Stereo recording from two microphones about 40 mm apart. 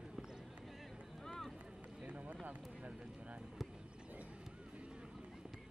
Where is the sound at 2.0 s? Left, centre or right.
Right.